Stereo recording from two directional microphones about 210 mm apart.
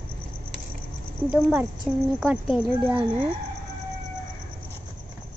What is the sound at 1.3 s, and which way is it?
A child's voice, 10° right (ahead or behind).